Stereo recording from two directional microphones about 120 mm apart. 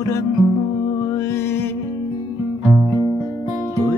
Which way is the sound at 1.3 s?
20° left (ahead or behind).